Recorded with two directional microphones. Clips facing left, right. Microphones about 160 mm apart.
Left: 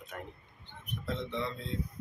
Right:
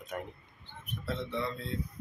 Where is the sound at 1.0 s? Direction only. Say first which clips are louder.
Right 1 dB; 20° left (ahead or behind).